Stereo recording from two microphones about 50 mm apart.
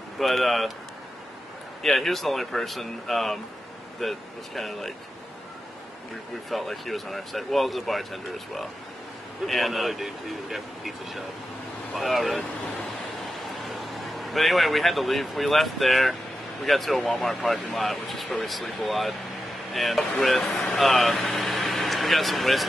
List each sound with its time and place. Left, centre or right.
0.2 s speech: centre
1.8 s speech: centre
6.5 s speech: centre
13.7 s speech: centre
21.4 s vehicle: centre